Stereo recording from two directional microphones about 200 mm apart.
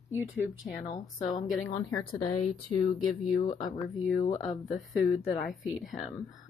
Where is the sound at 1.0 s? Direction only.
20° left (ahead or behind).